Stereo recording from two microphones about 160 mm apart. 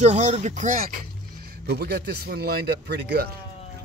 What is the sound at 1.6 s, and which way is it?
Speech, 90° right.